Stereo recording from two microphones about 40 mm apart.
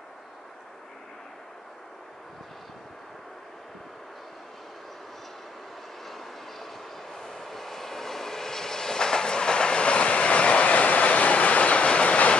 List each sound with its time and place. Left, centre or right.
6.0 s train: centre; by 12.4 s left